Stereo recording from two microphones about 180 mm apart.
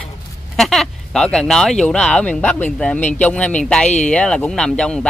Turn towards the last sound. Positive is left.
turn(degrees=5)  # may be behind; listen again after turning